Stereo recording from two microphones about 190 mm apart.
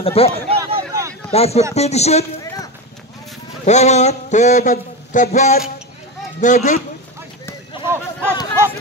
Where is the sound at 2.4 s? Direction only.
15° left (ahead or behind).